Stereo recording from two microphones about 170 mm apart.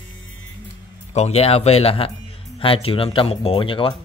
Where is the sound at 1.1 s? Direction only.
40° left (ahead or behind).